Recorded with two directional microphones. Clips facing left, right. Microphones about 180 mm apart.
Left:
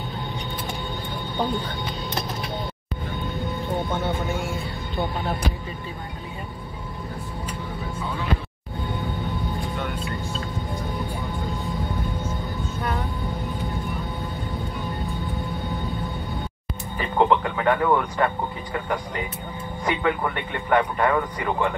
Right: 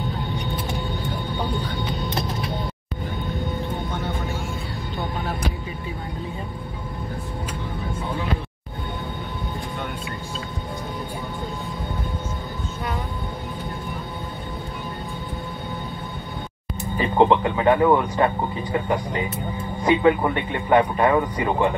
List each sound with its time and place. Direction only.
17.0 s speech: 25° right (ahead or behind)